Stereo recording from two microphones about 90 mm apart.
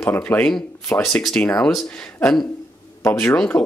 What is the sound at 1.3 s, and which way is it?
Speech, 15° left (ahead or behind).